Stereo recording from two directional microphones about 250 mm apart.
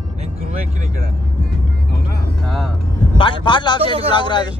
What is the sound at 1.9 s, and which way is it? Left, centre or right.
Music, left.